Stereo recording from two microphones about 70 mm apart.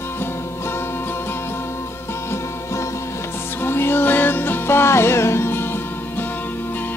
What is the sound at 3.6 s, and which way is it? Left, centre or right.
Music, left.